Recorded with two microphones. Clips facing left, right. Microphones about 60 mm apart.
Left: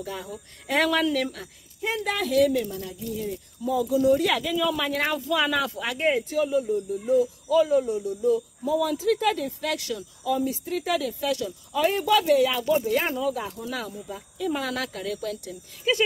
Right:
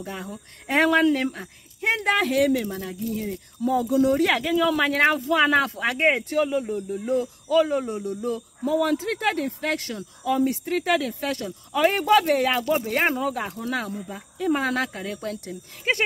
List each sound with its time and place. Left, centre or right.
0.0 s speech: right
2.0 s speech: right